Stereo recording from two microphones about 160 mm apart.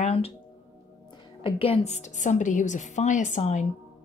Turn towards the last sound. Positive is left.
turn(degrees=50)  # may be behind; listen again after turning